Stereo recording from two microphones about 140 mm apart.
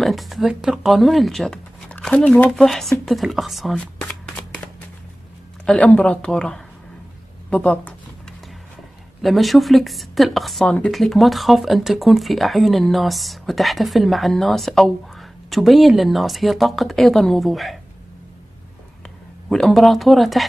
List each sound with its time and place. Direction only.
0.0 s speech: centre (ahead or behind)
5.7 s speech: 5° left (ahead or behind)
7.4 s a sound: 10° left (ahead or behind)
9.2 s a woman's voice: centre (ahead or behind)
19.5 s a woman's voice: centre (ahead or behind)